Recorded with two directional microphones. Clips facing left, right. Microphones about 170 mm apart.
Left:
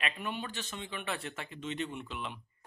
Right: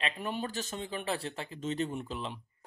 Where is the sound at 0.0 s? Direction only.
40° right (ahead or behind).